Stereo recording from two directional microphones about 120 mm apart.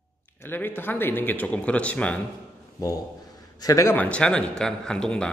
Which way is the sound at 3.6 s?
30° left (ahead or behind).